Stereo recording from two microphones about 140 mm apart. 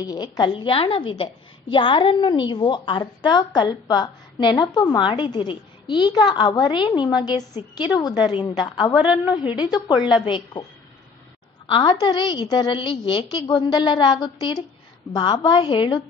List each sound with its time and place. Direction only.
0.0 s a woman's voice: 30° left (ahead or behind)
8.9 s a woman's voice: 5° right (ahead or behind)
9.3 s a woman's voice: 30° left (ahead or behind)
11.6 s a woman's voice: 40° left (ahead or behind)